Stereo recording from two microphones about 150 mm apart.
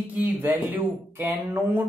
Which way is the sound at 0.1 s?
10° right (ahead or behind).